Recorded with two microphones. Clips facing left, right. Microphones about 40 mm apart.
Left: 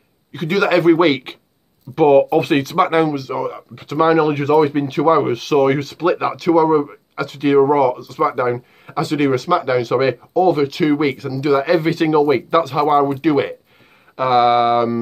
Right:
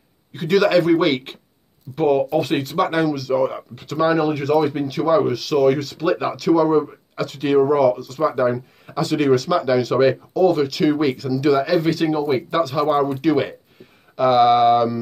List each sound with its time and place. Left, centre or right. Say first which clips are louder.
0.5 s speech: left 2 dB; left
2.8 s speech: left 3 dB; left
4.0 s speech: left 4 dB; left
6.0 s speech: left 2 dB; left
8.2 s speech: left 3 dB; left
11.5 s speech: left 7 dB; left
12.8 s speech: left 3 dB; centre